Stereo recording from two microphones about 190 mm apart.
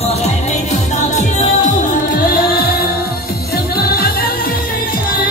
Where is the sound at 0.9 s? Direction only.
40° left (ahead or behind).